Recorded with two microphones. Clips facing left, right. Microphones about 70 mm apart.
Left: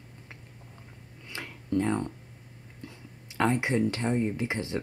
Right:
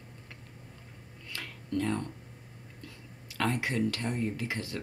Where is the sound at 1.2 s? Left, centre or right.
Left.